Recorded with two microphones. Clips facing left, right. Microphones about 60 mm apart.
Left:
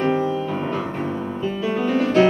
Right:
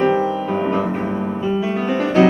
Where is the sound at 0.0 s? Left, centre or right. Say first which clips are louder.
Right 3 dB; centre.